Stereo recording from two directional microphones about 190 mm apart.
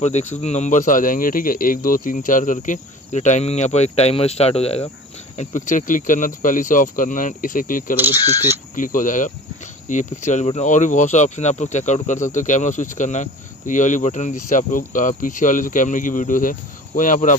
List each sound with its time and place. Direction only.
0.0 s speech: 35° left (ahead or behind)